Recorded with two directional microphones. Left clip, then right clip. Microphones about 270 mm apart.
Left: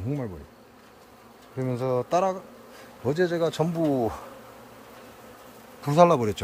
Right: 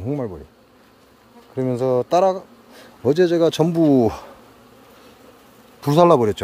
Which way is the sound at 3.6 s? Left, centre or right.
Right.